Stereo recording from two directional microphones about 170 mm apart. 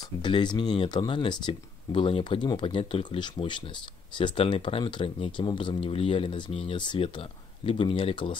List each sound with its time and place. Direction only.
0.2 s speech: 25° left (ahead or behind)